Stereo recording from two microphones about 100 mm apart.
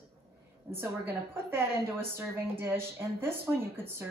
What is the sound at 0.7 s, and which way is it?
A woman's voice, 20° right (ahead or behind).